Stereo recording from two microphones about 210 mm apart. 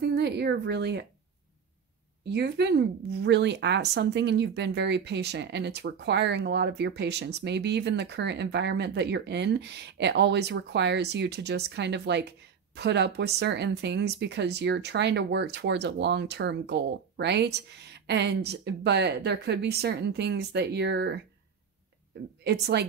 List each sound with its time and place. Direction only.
0.0 s speech: 50° right (ahead or behind)
2.2 s speech: 55° right (ahead or behind)
22.4 s speech: 50° right (ahead or behind)